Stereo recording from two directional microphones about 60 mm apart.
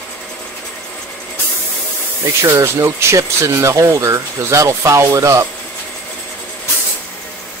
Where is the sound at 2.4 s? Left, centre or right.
Right.